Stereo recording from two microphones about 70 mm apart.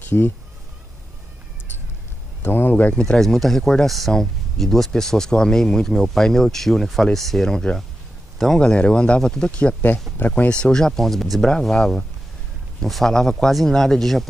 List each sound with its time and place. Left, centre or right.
0.1 s speech: left
2.4 s speech: left
10.1 s speech: left; by 14.2 s centre